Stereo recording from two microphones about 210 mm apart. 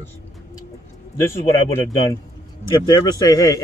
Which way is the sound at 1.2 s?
10° left (ahead or behind).